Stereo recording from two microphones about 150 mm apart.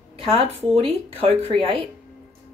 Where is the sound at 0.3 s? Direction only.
40° right (ahead or behind).